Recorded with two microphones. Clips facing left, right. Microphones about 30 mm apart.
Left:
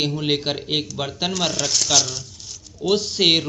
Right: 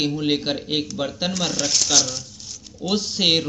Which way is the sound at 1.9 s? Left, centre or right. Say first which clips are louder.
Left 1 dB; left.